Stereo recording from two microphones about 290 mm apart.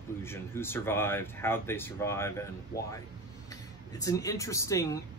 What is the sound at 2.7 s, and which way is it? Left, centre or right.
Speech, left.